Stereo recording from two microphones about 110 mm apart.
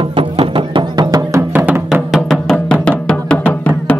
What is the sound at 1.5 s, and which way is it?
Music, 15° right (ahead or behind).